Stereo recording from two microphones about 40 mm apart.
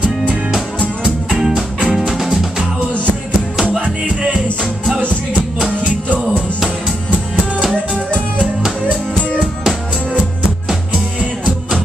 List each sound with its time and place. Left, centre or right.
1.3 s music: centre
3.8 s music: right
10.7 s music: centre